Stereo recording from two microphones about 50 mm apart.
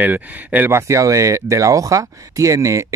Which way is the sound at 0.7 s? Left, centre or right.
Right.